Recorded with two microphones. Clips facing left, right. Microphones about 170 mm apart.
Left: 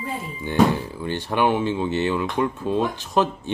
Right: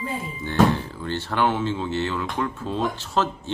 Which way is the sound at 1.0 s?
15° left (ahead or behind).